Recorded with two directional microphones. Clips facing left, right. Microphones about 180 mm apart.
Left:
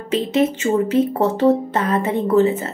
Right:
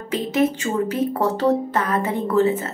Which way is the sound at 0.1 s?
25° left (ahead or behind).